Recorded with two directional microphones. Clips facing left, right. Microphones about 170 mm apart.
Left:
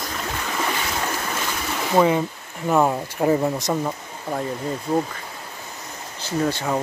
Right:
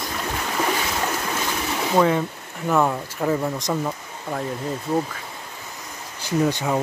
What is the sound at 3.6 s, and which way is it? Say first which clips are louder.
Speech: left 1 dB; 5° left (ahead or behind).